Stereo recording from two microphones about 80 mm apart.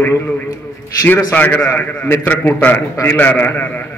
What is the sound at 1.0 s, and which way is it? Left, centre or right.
A man's voice, left.